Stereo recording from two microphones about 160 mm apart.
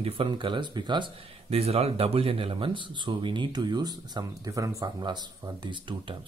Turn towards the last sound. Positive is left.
turn(degrees=-30)  # may be behind; listen again after turning